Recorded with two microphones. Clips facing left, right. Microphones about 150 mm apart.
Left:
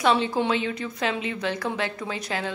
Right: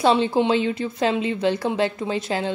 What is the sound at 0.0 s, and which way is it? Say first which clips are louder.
A woman's voice: right 4 dB; 30° right (ahead or behind).